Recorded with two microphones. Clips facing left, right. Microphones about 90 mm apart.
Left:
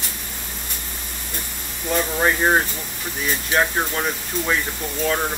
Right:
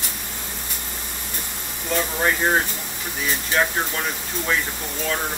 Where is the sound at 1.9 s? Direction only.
20° left (ahead or behind).